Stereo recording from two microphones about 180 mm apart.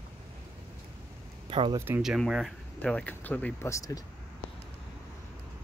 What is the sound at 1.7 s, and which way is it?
Speech, 10° right (ahead or behind).